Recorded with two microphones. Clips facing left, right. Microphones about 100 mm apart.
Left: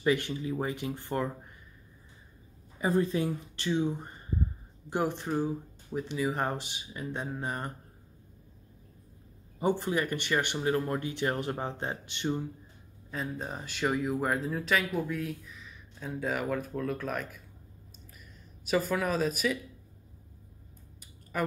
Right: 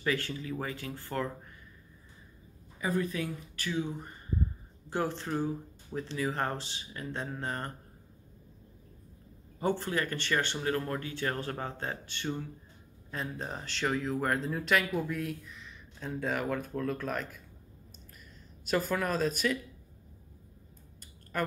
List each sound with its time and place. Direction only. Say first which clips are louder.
0.0 s speech: left 5 dB; 20° left (ahead or behind)
2.8 s speech: left 4 dB; 30° left (ahead or behind)
4.8 s speech: left 2 dB; 15° left (ahead or behind)
9.6 s speech: left 2 dB; 15° left (ahead or behind)
13.1 s speech: left 1 dB; 5° left (ahead or behind)
18.7 s speech: left 2 dB; centre (ahead or behind)
21.0 s a sound: left 1 dB; 5° left (ahead or behind)